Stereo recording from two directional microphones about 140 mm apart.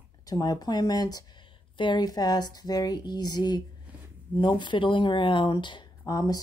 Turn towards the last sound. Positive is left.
turn(degrees=25)  # may be behind; listen again after turning